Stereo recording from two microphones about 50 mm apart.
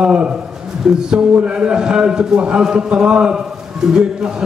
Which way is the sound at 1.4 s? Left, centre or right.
Centre.